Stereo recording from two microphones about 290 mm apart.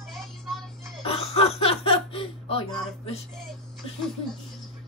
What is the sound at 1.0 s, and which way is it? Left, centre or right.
Laughter, left.